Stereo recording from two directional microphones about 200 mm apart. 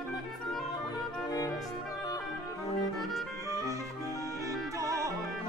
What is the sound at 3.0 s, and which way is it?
Music, centre (ahead or behind).